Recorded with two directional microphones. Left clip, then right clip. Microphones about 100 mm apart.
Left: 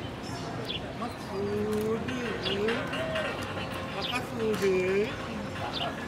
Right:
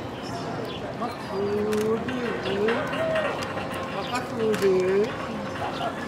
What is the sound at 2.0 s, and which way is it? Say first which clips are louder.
Livestock: right 4 dB; 15° left (ahead or behind).